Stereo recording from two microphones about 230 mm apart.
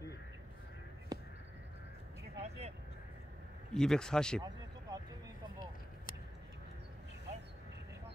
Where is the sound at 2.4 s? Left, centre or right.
Right.